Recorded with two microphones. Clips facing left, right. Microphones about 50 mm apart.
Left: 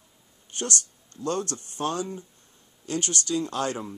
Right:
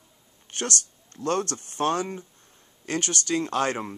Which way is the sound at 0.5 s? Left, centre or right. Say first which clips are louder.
Right 1 dB; right.